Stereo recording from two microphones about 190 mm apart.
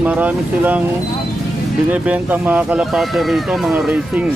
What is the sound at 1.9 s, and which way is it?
Speech, 5° right (ahead or behind).